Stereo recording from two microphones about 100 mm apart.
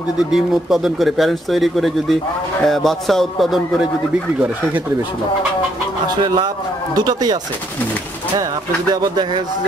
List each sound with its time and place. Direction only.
0.3 s speech: 5° right (ahead or behind)
6.0 s speech: 45° right (ahead or behind)
8.4 s speech: 40° right (ahead or behind)